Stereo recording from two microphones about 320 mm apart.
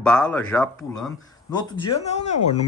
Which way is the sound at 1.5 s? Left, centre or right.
Centre.